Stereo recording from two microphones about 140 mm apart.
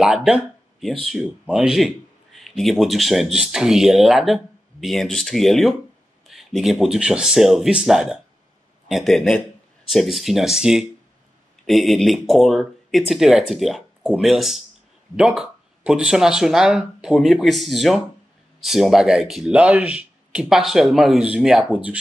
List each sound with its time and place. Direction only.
0.0 s speech: 5° right (ahead or behind)